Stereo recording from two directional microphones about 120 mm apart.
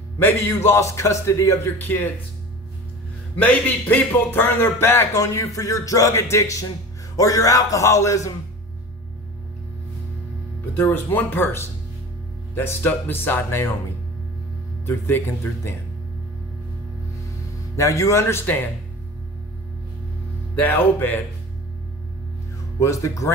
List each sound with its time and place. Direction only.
0.2 s speech: 20° left (ahead or behind)
3.3 s speech: 15° left (ahead or behind)
10.6 s speech: 15° left (ahead or behind)
14.9 s speech: 20° left (ahead or behind)
17.7 s speech: 25° left (ahead or behind)
20.6 s speech: 15° left (ahead or behind)
22.8 s speech: 25° left (ahead or behind)